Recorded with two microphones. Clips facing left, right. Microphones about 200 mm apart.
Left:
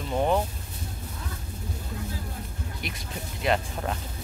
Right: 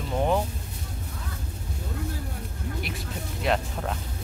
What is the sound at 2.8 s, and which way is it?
Speech, centre (ahead or behind).